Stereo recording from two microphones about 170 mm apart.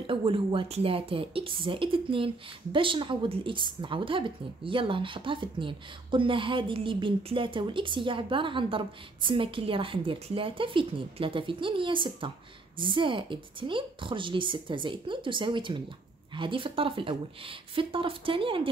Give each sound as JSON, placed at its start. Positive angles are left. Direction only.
{"t": 0.0, "sound": "speech", "side_deg": -30}